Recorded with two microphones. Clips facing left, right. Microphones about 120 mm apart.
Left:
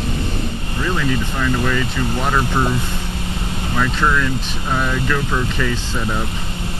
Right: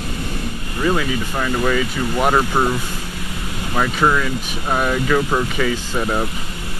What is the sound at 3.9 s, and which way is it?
Speech, 15° right (ahead or behind).